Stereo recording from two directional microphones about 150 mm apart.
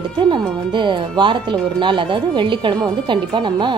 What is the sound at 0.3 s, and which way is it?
Speech, 30° right (ahead or behind).